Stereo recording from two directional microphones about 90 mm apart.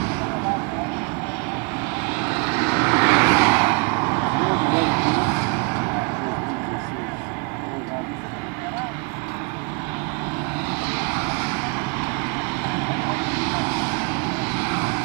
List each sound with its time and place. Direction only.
2.2 s vehicle: 25° right (ahead or behind)